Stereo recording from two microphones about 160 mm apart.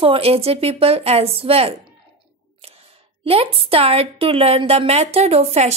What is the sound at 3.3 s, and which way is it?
A woman's voice, 35° right (ahead or behind).